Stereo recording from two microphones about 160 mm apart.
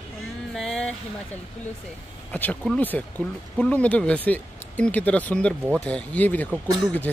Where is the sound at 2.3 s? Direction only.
10° left (ahead or behind).